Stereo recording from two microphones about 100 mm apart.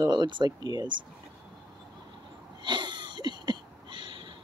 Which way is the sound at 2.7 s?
50° right (ahead or behind).